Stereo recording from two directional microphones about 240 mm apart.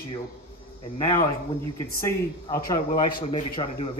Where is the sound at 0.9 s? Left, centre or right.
Centre.